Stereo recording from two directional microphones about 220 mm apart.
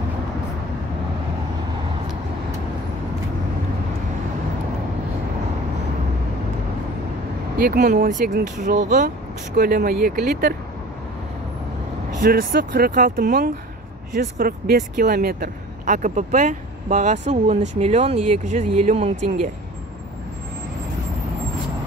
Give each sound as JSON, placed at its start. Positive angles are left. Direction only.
{"t": 7.5, "sound": "speech", "side_deg": -45}
{"t": 8.4, "sound": "speech", "side_deg": -35}
{"t": 12.2, "sound": "speech", "side_deg": -40}